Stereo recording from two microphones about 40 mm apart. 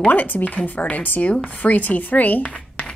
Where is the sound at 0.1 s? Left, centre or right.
Left.